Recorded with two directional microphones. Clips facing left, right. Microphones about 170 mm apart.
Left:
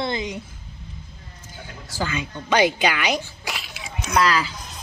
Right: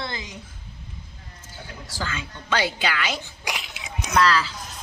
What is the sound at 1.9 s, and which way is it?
A woman's voice, 15° left (ahead or behind).